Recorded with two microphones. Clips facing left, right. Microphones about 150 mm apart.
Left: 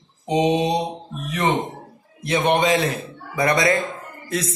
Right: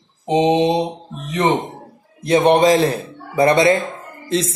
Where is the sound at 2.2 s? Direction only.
35° right (ahead or behind).